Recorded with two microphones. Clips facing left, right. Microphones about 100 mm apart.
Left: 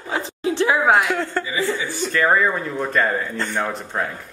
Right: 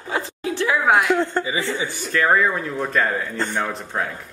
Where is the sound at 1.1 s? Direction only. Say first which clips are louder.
Right 2 dB; 20° right (ahead or behind).